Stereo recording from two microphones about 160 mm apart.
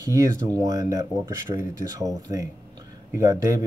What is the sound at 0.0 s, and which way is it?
Speech, 20° right (ahead or behind).